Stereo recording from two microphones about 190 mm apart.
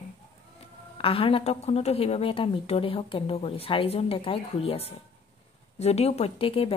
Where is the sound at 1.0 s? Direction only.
30° left (ahead or behind).